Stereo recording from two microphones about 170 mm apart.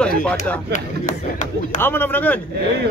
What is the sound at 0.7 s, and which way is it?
Speech, 45° left (ahead or behind).